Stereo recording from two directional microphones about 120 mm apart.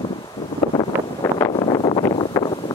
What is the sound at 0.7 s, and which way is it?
Vehicle, 30° left (ahead or behind).